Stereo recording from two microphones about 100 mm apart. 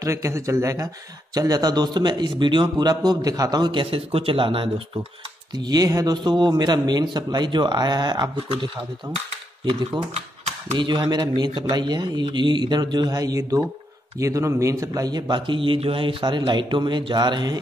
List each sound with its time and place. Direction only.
0.0 s a man's voice: 30° right (ahead or behind); by 4.8 s 60° right (ahead or behind)
5.6 s a man's voice: 40° right (ahead or behind)
10.1 s typewriter: 90° right
10.8 s a man's voice: 50° right (ahead or behind)